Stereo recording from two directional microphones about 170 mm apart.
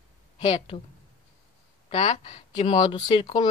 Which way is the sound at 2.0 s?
40° left (ahead or behind).